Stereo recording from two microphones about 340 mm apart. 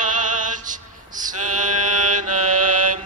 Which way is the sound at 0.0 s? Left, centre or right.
Right.